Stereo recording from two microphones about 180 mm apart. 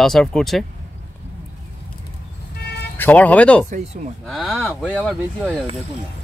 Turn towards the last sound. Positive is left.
turn(degrees=0)  # may be behind; listen again after turning